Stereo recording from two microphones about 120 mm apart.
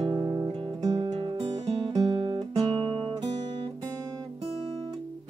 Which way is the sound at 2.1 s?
50° right (ahead or behind).